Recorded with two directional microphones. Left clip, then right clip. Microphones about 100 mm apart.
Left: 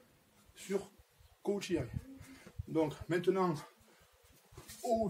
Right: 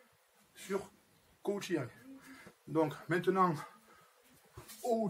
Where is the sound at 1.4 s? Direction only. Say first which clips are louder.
Even; 15° left (ahead or behind).